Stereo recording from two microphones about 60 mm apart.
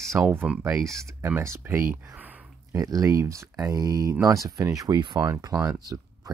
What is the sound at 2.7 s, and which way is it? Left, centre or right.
Speech, right.